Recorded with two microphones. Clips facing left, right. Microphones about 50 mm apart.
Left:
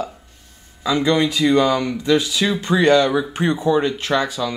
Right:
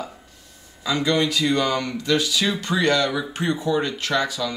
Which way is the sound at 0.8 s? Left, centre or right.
Left.